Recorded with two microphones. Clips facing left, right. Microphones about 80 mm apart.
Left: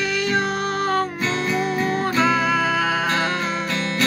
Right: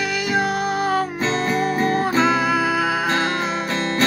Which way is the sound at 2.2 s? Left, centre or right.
Centre.